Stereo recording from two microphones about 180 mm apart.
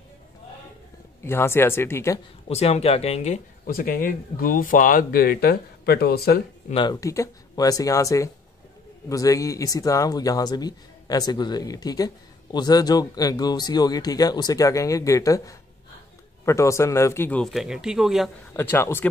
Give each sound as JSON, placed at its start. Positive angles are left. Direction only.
{"t": 1.2, "sound": "speech", "side_deg": 15}
{"t": 2.5, "sound": "speech", "side_deg": 35}
{"t": 6.7, "sound": "speech", "side_deg": 25}
{"t": 18.6, "sound": "speech", "side_deg": 15}